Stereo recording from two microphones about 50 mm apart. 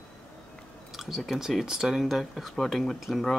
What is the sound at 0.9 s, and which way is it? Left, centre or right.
Speech, centre.